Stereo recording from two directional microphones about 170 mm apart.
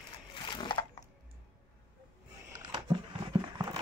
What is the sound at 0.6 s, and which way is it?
Sewing machine, 25° left (ahead or behind).